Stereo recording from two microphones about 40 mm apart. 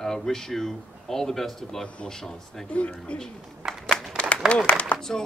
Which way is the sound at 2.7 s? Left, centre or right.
Left.